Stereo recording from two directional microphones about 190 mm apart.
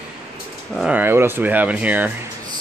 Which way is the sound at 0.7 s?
5° right (ahead or behind).